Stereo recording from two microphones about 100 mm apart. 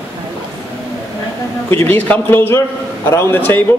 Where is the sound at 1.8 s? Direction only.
15° left (ahead or behind).